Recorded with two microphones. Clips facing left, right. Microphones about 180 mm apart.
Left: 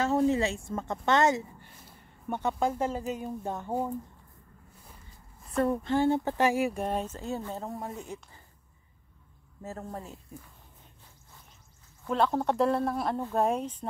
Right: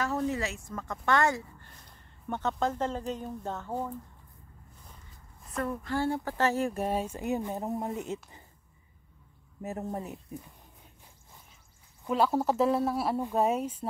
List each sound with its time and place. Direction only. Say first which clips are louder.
0.0 s a woman's voice: left 5 dB; 25° left (ahead or behind)
1.8 s speech: left 3 dB; 5° left (ahead or behind)
5.6 s speech: left 5 dB; 30° left (ahead or behind); by 6.7 s 10° left (ahead or behind)
6.7 s speech: right 1 dB; 5° right (ahead or behind); by 8.4 s 20° right (ahead or behind)
9.6 s speech: right 4 dB; 20° right (ahead or behind)
12.1 s speech: even; 5° right (ahead or behind)